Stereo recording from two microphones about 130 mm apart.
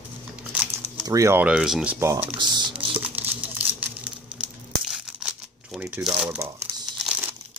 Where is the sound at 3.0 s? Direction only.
10° right (ahead or behind).